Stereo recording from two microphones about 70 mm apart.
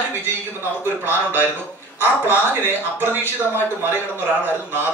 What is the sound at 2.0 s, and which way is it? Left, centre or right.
A man's voice, right.